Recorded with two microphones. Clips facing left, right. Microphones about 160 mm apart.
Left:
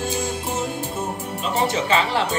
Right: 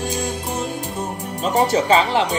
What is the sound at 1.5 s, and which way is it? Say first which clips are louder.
Speech: right 5 dB; 40° right (ahead or behind).